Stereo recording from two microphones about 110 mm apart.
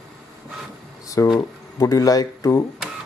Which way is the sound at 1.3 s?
30° left (ahead or behind).